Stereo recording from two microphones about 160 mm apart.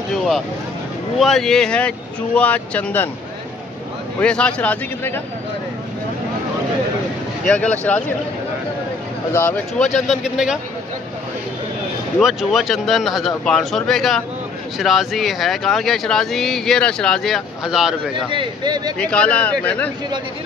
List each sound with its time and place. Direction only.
0.1 s vehicle: centre (ahead or behind)
1.1 s speech: centre (ahead or behind)
4.2 s speech: 5° left (ahead or behind)
7.4 s speech: 10° left (ahead or behind)
9.3 s speech: 10° left (ahead or behind)
9.9 s speech: centre (ahead or behind)
12.2 s speech: centre (ahead or behind)
18.1 s speech: 30° right (ahead or behind)
18.9 s speech: 5° left (ahead or behind)